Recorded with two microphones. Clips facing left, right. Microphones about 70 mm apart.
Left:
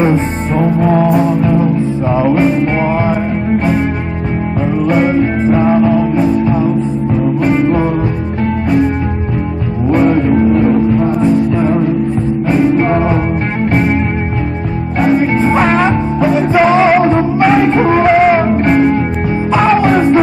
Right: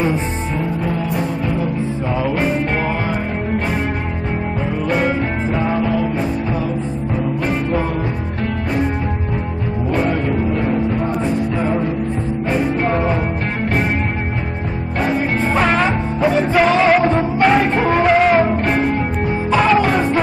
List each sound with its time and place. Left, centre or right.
0.6 s music: left
4.8 s music: centre
5.5 s music: left
15.1 s music: left